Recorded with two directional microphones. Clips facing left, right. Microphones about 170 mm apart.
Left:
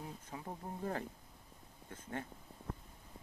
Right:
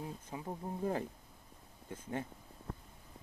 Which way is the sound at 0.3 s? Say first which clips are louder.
Right 2 dB; 15° right (ahead or behind).